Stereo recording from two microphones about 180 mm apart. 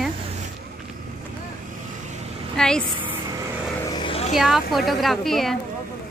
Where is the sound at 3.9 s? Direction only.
30° left (ahead or behind).